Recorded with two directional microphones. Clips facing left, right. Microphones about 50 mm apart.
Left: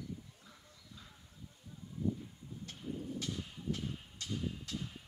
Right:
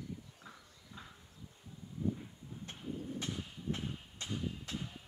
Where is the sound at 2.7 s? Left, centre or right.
Right.